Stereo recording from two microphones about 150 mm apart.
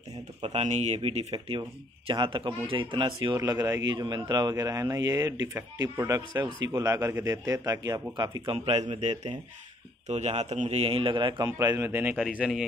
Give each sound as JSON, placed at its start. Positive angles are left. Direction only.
{"t": 0.4, "sound": "speech", "side_deg": -40}
{"t": 3.3, "sound": "speech", "side_deg": -20}
{"t": 8.5, "sound": "speech", "side_deg": -45}
{"t": 11.4, "sound": "a man's voice", "side_deg": -15}